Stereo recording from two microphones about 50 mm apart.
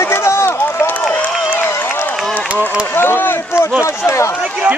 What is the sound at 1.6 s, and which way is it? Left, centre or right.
Run, left.